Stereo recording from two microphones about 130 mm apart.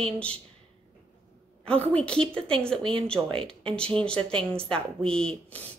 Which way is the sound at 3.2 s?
15° right (ahead or behind).